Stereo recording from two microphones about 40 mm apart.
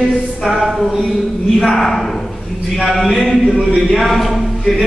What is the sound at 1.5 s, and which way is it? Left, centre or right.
A man's voice, centre.